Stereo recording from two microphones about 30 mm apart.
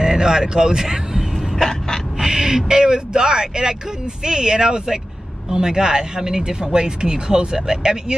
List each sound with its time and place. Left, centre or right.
0.0 s speech: centre